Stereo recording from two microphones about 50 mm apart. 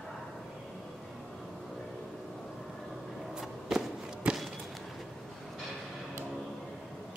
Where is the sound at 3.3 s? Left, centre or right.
Centre.